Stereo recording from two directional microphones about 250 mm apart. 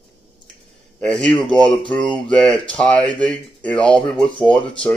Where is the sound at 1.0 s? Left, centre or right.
Centre.